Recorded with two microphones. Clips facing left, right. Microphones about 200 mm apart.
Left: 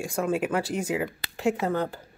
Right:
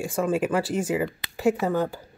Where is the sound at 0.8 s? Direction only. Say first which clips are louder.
Right 3 dB; 5° right (ahead or behind).